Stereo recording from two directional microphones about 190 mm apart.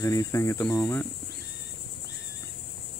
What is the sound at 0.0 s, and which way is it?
Speech, 15° left (ahead or behind).